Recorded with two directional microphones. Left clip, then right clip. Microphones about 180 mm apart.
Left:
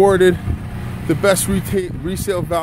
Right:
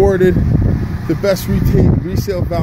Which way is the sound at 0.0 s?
Centre (ahead or behind).